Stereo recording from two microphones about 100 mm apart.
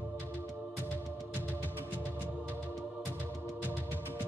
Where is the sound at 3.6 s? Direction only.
15° left (ahead or behind).